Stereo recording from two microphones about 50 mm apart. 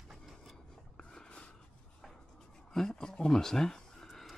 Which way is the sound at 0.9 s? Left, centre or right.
Centre.